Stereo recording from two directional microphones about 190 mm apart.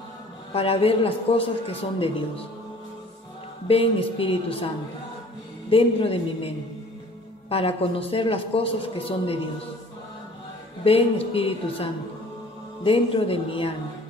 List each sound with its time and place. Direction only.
0.5 s a man's voice: 30° left (ahead or behind)
3.6 s a man's voice: 30° left (ahead or behind)
5.7 s a man's voice: 30° left (ahead or behind)
10.8 s a man's voice: 30° left (ahead or behind)